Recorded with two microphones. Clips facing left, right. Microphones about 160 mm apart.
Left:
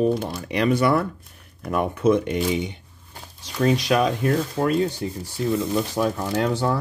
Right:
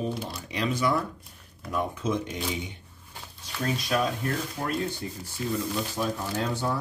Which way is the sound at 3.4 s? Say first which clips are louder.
Left 10 dB; 80° left.